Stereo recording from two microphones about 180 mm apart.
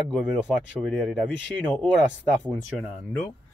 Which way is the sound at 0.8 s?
Centre (ahead or behind).